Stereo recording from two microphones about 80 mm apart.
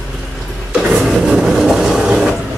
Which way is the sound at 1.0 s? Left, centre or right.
Centre.